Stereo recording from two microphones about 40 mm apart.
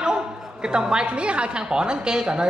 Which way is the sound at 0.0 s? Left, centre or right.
Centre.